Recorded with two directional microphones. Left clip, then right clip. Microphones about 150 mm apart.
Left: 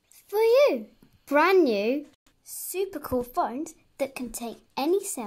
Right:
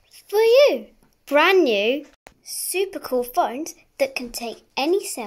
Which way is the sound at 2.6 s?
10° left (ahead or behind).